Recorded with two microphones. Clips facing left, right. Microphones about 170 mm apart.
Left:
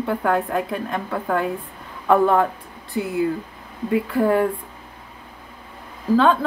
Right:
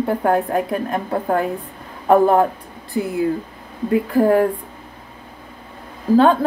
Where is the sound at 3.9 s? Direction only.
40° right (ahead or behind).